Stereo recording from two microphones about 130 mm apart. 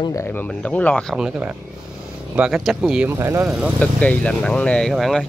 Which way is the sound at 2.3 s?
5° right (ahead or behind).